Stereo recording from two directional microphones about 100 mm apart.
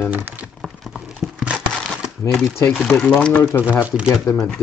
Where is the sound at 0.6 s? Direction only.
Centre (ahead or behind).